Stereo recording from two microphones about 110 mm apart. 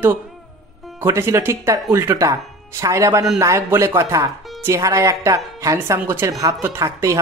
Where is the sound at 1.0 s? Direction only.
25° right (ahead or behind).